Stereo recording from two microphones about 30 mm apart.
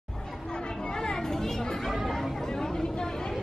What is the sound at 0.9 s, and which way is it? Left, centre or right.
Chatter, centre.